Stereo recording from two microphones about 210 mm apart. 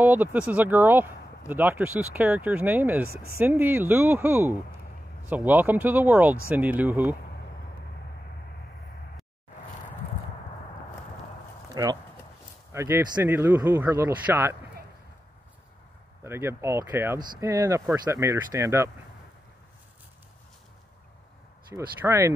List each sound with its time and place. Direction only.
0.0 s speech: 10° right (ahead or behind)
11.7 s speech: 20° right (ahead or behind)
16.3 s speech: 10° right (ahead or behind)
21.7 s speech: 10° right (ahead or behind)